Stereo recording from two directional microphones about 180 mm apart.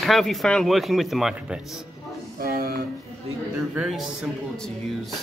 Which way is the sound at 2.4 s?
55° right (ahead or behind).